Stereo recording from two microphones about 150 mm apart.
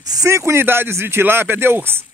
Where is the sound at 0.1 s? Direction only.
20° right (ahead or behind).